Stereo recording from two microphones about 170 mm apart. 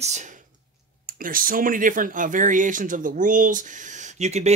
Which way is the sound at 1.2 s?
55° right (ahead or behind).